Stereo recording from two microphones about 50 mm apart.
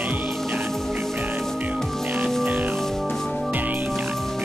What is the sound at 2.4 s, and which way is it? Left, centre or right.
Music, right.